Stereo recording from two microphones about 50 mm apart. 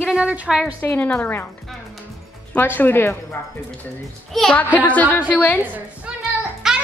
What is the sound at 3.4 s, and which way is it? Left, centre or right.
Speech, left.